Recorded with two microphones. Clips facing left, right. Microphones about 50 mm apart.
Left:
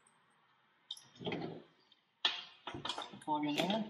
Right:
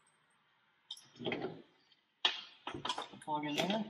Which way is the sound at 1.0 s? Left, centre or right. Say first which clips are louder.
Right 3 dB; centre.